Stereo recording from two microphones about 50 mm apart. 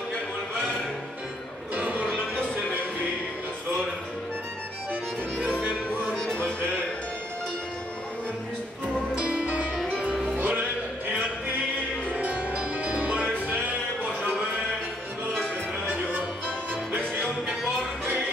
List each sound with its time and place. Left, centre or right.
1.8 s music: right
6.0 s music: centre
9.1 s music: centre; by 10.7 s right
12.1 s music: right